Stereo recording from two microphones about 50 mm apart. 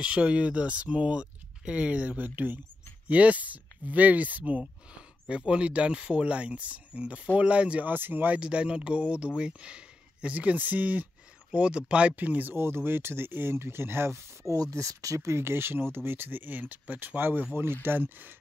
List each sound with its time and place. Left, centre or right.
0.0 s speech: right
7.9 s speech: right
8.4 s speech: right
9.4 s a sound: right
10.3 s speech: right
11.5 s speech: right
12.2 s speech: right
12.5 s speech: right
14.1 s speech: right